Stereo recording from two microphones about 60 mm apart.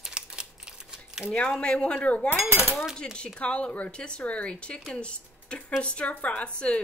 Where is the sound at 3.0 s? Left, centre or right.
Centre.